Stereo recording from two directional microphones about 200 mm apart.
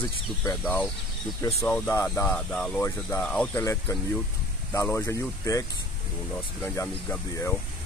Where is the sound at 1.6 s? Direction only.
10° left (ahead or behind).